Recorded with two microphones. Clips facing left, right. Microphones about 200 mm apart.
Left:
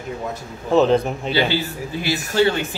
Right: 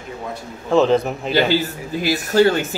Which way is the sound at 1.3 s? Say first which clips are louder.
Right 4 dB; 45° right (ahead or behind).